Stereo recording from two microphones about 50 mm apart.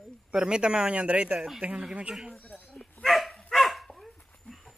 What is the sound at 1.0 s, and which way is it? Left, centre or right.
Speech, right.